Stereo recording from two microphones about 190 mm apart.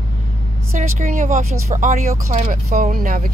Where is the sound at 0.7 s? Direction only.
45° right (ahead or behind).